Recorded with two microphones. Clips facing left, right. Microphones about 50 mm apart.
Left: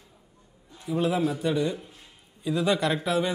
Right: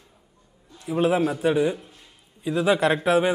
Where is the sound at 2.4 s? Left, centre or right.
Centre.